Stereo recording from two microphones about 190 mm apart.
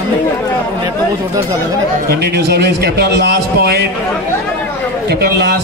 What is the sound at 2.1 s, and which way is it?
A man's voice, 60° right (ahead or behind).